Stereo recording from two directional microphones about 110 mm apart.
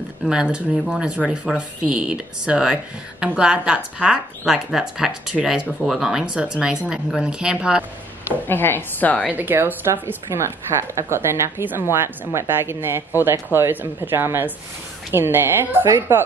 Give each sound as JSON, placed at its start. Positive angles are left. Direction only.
{"t": 0.2, "sound": "speech", "side_deg": -5}
{"t": 8.5, "sound": "a woman's voice", "side_deg": 20}
{"t": 9.3, "sound": "speech", "side_deg": -20}